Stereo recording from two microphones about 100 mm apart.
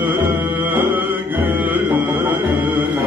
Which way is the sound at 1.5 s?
15° right (ahead or behind).